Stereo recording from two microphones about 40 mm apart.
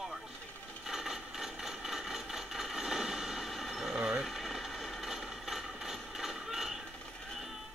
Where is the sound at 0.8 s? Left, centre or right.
Centre.